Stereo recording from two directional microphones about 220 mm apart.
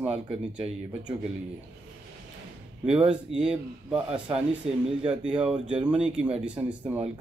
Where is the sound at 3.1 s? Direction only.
5° right (ahead or behind).